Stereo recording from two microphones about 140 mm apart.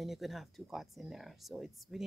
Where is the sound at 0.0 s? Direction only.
Centre (ahead or behind).